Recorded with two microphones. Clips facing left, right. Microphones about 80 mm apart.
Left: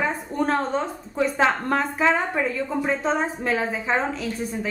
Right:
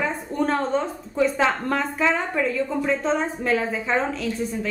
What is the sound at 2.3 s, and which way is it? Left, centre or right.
Speech, centre.